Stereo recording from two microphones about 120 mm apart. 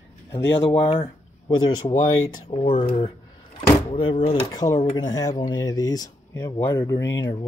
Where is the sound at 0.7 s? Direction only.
45° left (ahead or behind).